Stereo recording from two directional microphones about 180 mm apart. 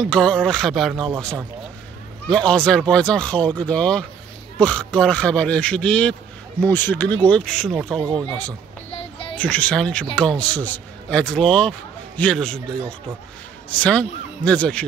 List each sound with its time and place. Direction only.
0.0 s speech: 5° left (ahead or behind)
2.2 s speech: 5° left (ahead or behind)
8.9 s music: 30° left (ahead or behind)
9.4 s speech: 5° left (ahead or behind)
13.7 s speech: 5° left (ahead or behind)